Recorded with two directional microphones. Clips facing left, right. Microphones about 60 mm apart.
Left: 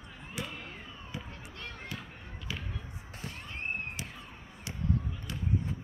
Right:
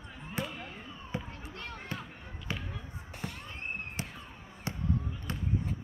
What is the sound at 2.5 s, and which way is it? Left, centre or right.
Basketball bounce, right.